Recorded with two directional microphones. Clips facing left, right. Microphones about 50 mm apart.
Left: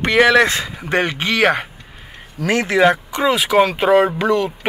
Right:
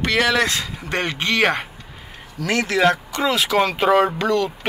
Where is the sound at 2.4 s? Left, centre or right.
Left.